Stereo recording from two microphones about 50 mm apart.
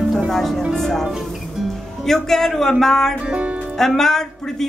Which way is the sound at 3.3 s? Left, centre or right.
Right.